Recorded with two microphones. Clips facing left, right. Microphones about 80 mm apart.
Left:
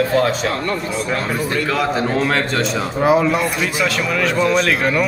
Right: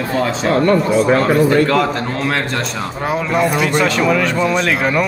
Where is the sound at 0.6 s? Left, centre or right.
Right.